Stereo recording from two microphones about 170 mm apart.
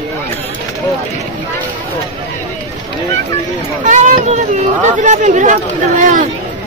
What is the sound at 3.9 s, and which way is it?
Speech, 45° right (ahead or behind).